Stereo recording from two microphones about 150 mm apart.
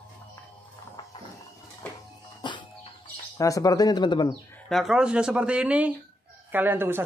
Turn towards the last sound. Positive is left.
turn(degrees=-15)  # may be behind; listen again after turning